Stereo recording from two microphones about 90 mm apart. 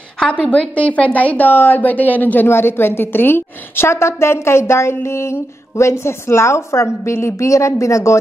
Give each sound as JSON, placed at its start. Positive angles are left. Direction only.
{"t": 0.2, "sound": "a woman's voice", "side_deg": 15}